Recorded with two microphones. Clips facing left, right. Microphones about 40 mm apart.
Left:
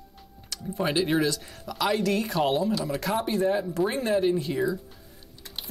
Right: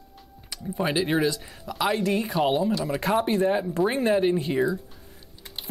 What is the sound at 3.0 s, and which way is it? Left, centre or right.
Speech, right.